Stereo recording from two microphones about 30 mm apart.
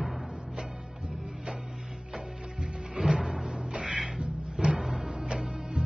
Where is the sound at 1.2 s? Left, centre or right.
Right.